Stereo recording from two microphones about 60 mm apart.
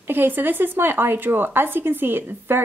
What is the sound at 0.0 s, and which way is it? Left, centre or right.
Speech, right.